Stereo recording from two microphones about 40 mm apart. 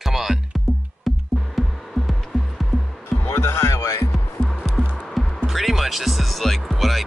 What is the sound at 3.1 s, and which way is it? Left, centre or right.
Music, left.